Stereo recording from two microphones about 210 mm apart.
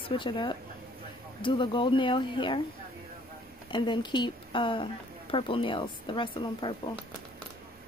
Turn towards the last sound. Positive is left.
turn(degrees=25)  # may be behind; listen again after turning